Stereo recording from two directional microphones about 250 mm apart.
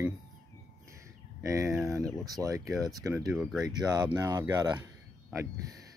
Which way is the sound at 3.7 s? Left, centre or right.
Centre.